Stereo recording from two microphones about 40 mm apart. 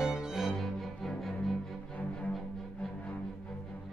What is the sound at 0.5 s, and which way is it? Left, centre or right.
Cello, centre.